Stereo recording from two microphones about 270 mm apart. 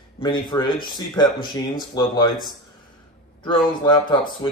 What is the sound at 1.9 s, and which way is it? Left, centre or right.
Speech, centre.